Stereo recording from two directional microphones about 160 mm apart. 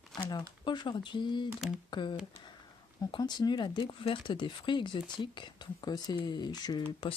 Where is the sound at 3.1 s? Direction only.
25° left (ahead or behind).